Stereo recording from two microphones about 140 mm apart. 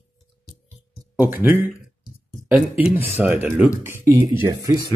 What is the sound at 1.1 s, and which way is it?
Speech, 15° right (ahead or behind).